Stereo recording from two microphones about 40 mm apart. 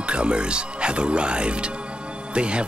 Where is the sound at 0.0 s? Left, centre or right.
Right.